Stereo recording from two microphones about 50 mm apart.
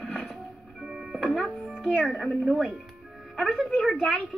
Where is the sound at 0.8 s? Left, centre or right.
Centre.